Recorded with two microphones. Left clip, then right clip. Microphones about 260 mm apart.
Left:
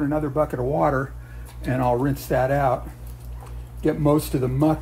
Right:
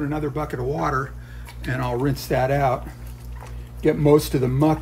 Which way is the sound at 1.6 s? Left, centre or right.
Centre.